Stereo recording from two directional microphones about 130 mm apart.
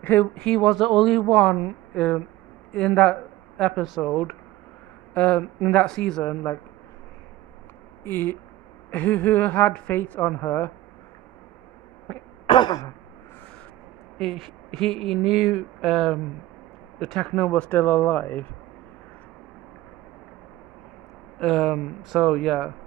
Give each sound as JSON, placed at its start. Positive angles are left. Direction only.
{"t": 0.0, "sound": "speech", "side_deg": 15}
{"t": 8.0, "sound": "a woman's voice", "side_deg": 15}
{"t": 12.4, "sound": "throat clearing", "side_deg": 35}
{"t": 14.1, "sound": "a woman's voice", "side_deg": 5}
{"t": 21.4, "sound": "speech", "side_deg": 0}